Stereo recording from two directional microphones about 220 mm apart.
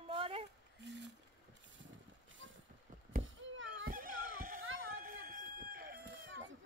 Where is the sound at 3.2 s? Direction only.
60° right (ahead or behind).